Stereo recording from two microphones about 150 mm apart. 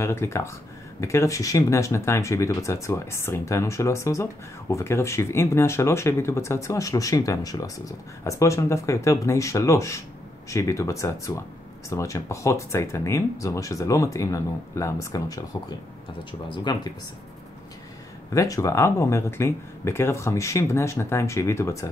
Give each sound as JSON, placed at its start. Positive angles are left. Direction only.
{"t": 0.0, "sound": "speech", "side_deg": 20}
{"t": 18.3, "sound": "speech", "side_deg": 20}